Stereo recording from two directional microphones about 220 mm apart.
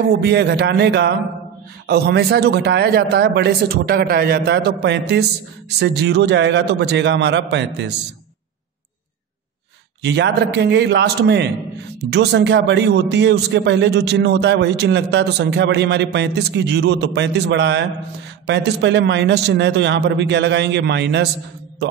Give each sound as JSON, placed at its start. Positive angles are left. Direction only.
{"t": 0.2, "sound": "a man's voice", "side_deg": -50}
{"t": 10.0, "sound": "a man's voice", "side_deg": -50}